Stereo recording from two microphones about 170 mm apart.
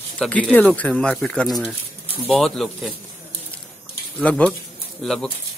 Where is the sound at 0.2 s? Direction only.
10° left (ahead or behind).